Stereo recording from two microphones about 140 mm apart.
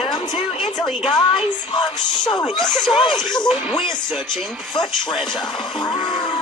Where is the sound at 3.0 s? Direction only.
30° left (ahead or behind).